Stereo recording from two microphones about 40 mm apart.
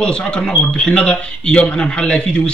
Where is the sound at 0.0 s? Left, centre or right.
Left.